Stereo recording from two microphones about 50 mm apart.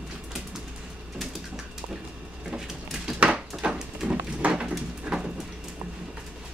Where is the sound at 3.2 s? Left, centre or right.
Right.